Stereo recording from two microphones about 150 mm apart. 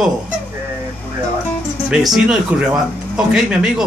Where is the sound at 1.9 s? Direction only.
5° right (ahead or behind).